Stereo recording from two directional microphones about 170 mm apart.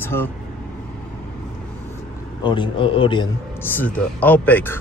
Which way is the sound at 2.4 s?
30° left (ahead or behind).